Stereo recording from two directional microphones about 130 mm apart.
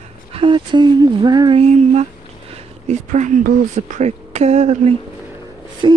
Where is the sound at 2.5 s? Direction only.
65° right (ahead or behind).